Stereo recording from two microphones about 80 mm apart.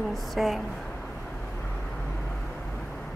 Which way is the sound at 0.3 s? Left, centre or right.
Centre.